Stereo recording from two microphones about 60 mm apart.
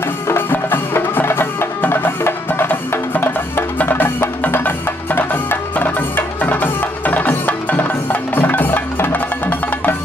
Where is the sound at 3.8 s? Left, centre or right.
Left.